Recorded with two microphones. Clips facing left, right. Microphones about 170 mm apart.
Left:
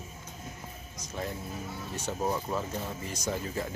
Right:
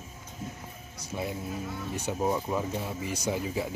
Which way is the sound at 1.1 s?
10° right (ahead or behind).